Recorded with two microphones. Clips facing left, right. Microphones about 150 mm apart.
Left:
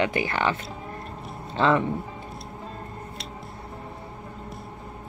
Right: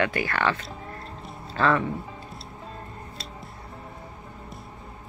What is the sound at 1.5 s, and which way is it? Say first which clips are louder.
Speech: left 2 dB; 20° left (ahead or behind).